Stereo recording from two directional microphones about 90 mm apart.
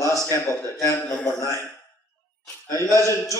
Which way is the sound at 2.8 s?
35° left (ahead or behind).